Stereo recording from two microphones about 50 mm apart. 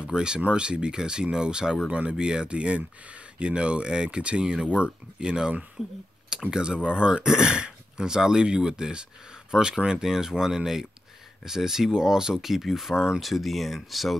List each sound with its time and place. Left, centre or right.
0.0 s speech: centre